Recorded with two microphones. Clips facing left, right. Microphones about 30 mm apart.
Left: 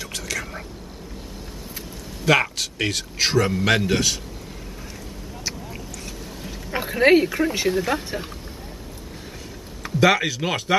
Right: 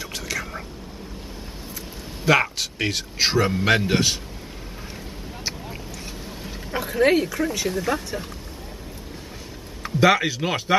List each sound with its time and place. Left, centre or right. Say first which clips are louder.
0.0 s whispering: even; centre
2.2 s a man's voice: even; centre
5.4 s a sound: even; centre
6.7 s speech: left 3 dB; left
9.8 s speech: even; centre